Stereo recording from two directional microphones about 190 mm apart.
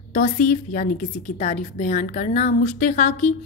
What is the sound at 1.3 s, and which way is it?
A woman's voice, 35° left (ahead or behind).